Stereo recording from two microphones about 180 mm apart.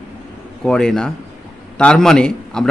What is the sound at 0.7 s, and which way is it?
Speech, 5° left (ahead or behind).